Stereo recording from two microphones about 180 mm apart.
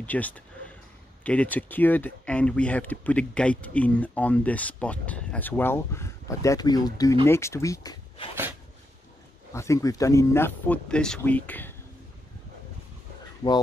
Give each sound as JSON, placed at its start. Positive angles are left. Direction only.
{"t": 0.0, "sound": "speech", "side_deg": 10}
{"t": 9.5, "sound": "speech", "side_deg": 15}
{"t": 13.4, "sound": "speech", "side_deg": 25}